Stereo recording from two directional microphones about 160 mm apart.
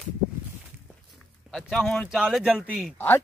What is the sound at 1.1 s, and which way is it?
Speech, centre (ahead or behind).